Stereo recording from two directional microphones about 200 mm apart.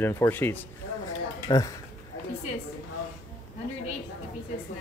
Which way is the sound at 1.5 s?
20° left (ahead or behind).